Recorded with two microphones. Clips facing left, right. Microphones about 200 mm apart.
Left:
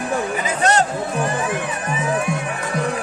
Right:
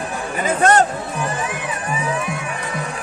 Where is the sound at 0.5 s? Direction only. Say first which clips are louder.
Right 4 dB; 50° right (ahead or behind).